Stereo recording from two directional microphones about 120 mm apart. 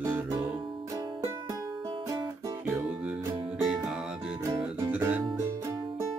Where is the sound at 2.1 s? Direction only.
30° right (ahead or behind).